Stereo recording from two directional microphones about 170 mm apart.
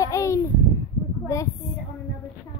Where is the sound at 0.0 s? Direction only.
20° left (ahead or behind).